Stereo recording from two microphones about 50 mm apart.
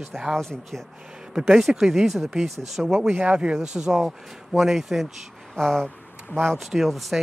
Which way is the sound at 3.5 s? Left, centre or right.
Centre.